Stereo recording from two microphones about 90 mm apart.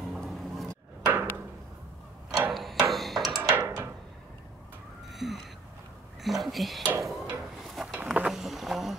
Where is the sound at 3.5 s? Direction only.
30° right (ahead or behind).